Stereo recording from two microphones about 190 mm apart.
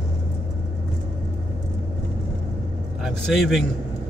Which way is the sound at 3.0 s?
Centre (ahead or behind).